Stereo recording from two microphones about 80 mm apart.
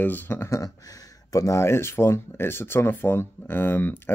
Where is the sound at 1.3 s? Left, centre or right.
Left.